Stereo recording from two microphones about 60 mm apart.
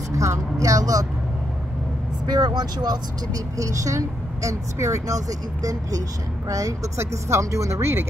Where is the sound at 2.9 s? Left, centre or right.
Right.